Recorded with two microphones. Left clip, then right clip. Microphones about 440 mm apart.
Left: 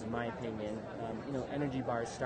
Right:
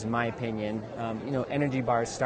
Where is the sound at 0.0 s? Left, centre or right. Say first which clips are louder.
Right 9 dB; right.